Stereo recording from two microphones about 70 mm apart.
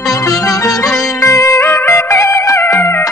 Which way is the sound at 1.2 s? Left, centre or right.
Left.